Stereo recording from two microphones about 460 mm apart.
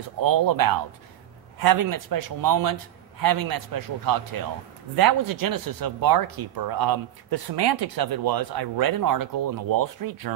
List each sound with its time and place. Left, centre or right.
0.2 s speech: right